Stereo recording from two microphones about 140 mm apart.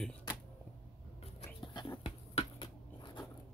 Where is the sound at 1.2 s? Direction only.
45° left (ahead or behind).